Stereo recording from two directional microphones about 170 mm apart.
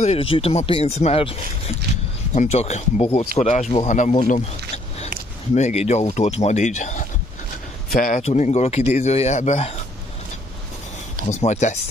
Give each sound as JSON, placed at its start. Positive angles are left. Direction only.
{"t": 0.0, "sound": "speech", "side_deg": 35}
{"t": 2.3, "sound": "speech", "side_deg": 40}
{"t": 5.5, "sound": "speech", "side_deg": 40}
{"t": 8.2, "sound": "speech", "side_deg": 40}
{"t": 11.2, "sound": "speech", "side_deg": 40}